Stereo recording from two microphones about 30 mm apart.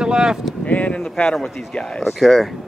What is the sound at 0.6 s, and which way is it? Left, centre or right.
Speech, left.